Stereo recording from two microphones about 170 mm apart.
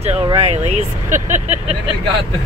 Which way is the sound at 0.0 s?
35° right (ahead or behind).